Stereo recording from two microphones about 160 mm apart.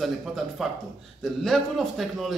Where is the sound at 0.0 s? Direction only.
Centre (ahead or behind).